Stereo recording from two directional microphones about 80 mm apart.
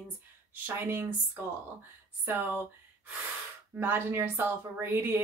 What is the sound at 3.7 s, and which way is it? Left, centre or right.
Speech, right.